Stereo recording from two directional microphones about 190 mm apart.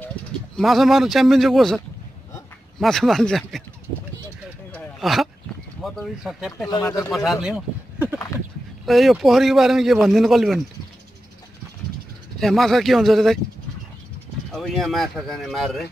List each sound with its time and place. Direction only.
0.0 s speech: 5° left (ahead or behind)
2.8 s speech: centre (ahead or behind)
4.7 s a sound: centre (ahead or behind)
5.8 s speech: centre (ahead or behind)
6.6 s speech: 15° left (ahead or behind)
7.4 s a sound: 5° right (ahead or behind)
8.8 s speech: centre (ahead or behind)
12.4 s speech: centre (ahead or behind)
14.5 s speech: centre (ahead or behind)